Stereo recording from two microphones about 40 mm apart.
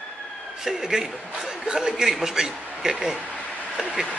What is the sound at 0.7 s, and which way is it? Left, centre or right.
A man's voice, centre.